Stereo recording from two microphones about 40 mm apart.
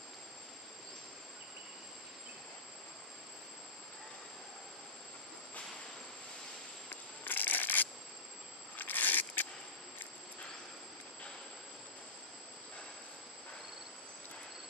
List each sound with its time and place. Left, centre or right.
6.9 s insect: left
8.7 s scrape: left